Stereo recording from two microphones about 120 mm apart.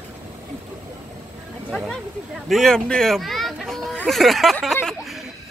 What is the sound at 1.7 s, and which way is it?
Speech, centre (ahead or behind).